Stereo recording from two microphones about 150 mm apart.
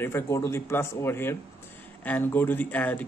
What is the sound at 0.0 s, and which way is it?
Speech, 15° left (ahead or behind).